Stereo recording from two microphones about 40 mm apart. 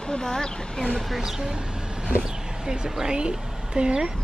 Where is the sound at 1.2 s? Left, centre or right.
Centre.